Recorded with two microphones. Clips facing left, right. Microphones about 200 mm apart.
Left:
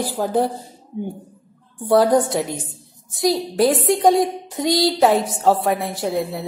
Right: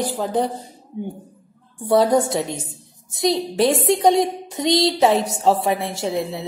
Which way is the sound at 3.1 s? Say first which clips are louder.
Left 1 dB; centre (ahead or behind).